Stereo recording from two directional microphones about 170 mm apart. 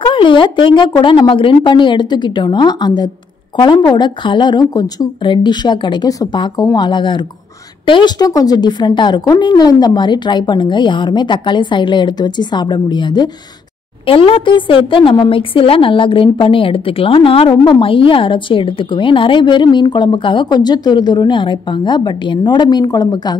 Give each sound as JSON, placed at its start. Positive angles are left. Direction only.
{"t": 0.0, "sound": "a woman's voice", "side_deg": 30}